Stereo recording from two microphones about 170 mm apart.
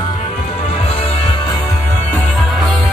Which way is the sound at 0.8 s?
35° left (ahead or behind).